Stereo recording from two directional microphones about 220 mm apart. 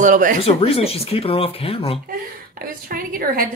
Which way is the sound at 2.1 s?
40° right (ahead or behind).